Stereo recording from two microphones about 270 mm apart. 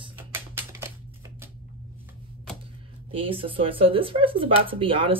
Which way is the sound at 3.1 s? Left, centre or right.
Centre.